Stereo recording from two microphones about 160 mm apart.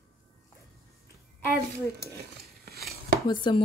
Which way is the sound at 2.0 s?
80° right.